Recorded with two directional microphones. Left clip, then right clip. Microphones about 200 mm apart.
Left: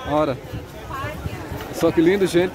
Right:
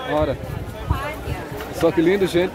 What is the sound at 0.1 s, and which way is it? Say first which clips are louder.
Speech: left 1 dB; 30° left (ahead or behind).